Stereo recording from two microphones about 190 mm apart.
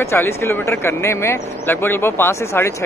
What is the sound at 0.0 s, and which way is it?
Speech, 15° left (ahead or behind).